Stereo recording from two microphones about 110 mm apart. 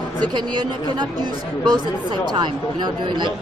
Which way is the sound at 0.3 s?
45° right (ahead or behind).